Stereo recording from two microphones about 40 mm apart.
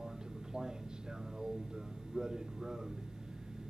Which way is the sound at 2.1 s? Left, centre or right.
Centre.